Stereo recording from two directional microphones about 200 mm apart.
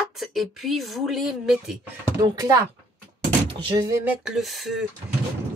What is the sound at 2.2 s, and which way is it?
Speech, 20° right (ahead or behind).